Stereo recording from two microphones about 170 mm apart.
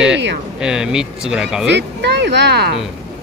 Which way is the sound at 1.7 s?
85° right.